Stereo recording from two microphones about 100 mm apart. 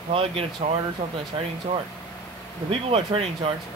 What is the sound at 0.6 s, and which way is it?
Speech, 70° right (ahead or behind).